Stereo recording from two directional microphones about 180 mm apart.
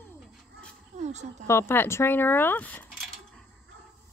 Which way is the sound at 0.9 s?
40° right (ahead or behind).